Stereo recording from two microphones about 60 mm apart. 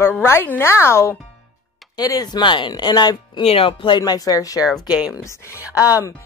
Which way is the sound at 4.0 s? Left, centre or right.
Left.